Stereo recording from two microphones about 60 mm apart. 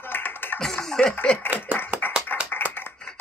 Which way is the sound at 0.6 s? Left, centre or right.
Centre.